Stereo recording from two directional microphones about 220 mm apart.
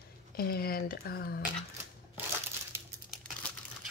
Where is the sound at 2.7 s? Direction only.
10° right (ahead or behind).